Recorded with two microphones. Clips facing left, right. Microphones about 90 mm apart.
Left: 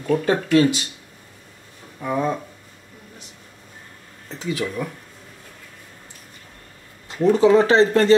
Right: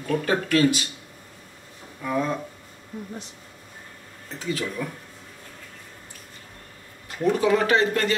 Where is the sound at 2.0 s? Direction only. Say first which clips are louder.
Left 3 dB; 20° left (ahead or behind).